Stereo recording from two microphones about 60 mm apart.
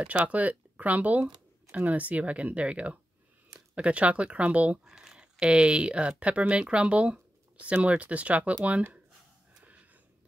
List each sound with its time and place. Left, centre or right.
0.0 s speech: right
4.8 s speech: centre